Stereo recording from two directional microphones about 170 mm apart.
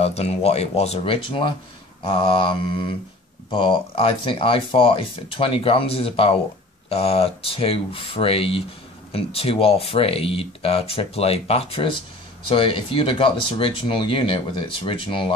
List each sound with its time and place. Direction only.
0.0 s speech: 40° left (ahead or behind)